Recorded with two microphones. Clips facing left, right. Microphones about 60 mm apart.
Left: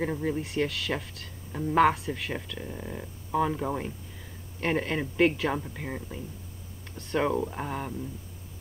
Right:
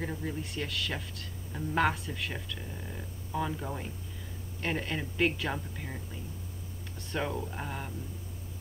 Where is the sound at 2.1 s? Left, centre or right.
Left.